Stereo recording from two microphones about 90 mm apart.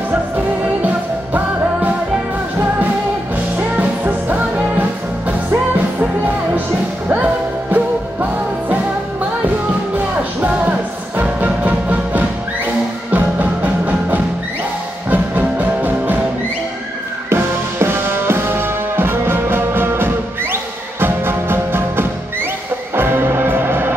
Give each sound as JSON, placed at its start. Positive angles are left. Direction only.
{"t": 0.8, "sound": "music", "side_deg": -20}
{"t": 3.5, "sound": "music", "side_deg": -20}
{"t": 7.7, "sound": "music", "side_deg": -20}
{"t": 10.4, "sound": "music", "side_deg": -15}
{"t": 17.3, "sound": "music", "side_deg": -25}